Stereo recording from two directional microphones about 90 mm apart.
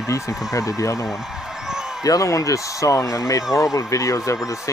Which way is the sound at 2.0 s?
40° left (ahead or behind).